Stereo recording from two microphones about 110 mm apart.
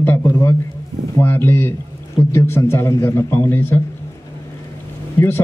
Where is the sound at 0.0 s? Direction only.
20° left (ahead or behind).